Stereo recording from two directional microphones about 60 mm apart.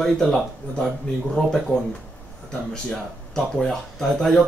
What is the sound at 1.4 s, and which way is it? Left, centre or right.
Speech, centre.